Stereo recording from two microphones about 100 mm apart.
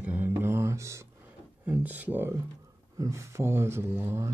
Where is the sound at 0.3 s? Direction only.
25° right (ahead or behind).